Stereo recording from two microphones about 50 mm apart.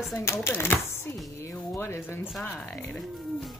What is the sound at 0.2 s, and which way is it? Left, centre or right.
Speech, left.